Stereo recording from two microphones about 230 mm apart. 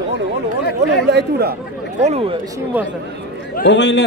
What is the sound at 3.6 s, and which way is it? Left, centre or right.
Speech, left.